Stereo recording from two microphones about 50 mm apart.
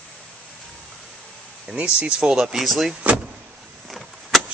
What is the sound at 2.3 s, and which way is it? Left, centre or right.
Speech, centre.